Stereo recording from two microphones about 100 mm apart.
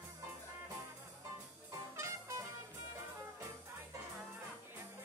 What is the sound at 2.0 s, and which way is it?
Music, 30° right (ahead or behind).